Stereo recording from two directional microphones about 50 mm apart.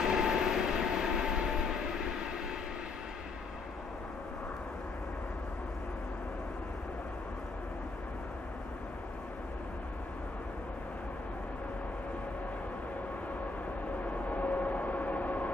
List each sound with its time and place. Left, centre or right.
0.0 s train: centre
14.0 s vehicle: left